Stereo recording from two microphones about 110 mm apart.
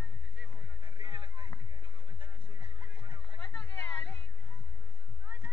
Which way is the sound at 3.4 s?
15° left (ahead or behind).